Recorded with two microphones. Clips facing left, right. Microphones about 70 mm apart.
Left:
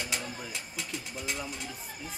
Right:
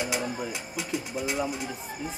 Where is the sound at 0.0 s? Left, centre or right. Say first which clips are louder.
Right 7 dB; centre.